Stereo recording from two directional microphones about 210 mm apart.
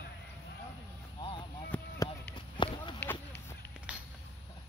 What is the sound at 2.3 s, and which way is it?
Run, 20° left (ahead or behind).